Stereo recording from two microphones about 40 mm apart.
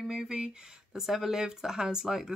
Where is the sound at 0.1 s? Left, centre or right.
Centre.